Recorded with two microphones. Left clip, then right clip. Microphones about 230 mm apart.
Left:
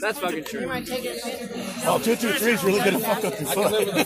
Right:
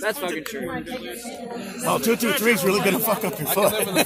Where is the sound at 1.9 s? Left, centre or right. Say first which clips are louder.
Right 1 dB; right.